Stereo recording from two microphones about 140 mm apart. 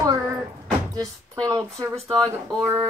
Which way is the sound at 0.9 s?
25° right (ahead or behind).